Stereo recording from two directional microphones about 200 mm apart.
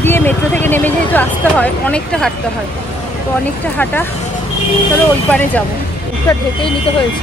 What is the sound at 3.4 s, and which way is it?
Speech, 10° left (ahead or behind).